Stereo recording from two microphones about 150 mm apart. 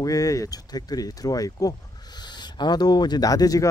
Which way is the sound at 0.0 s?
25° left (ahead or behind).